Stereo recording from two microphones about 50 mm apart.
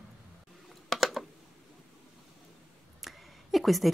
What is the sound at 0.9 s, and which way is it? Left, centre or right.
Typing, centre.